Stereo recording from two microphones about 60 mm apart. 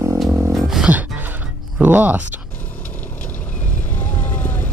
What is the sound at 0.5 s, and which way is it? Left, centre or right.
Music, centre.